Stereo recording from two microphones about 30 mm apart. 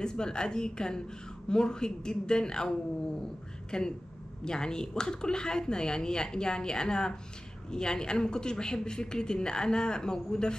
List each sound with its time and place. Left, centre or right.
0.0 s a woman's voice: left
3.7 s a woman's voice: left